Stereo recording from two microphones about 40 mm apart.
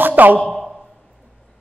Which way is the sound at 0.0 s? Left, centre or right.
Right.